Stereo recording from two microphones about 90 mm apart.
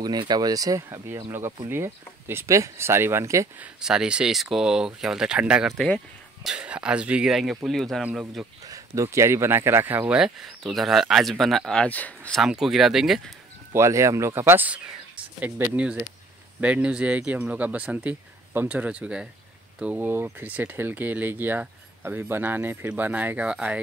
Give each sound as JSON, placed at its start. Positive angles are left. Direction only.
{"t": 0.0, "sound": "speech", "side_deg": -50}
{"t": 3.8, "sound": "speech", "side_deg": -10}
{"t": 8.0, "sound": "speech", "side_deg": -10}
{"t": 8.6, "sound": "speech", "side_deg": -35}
{"t": 10.1, "sound": "speech", "side_deg": -5}
{"t": 12.4, "sound": "speech", "side_deg": -5}
{"t": 13.7, "sound": "speech", "side_deg": -35}
{"t": 20.1, "sound": "speech", "side_deg": -25}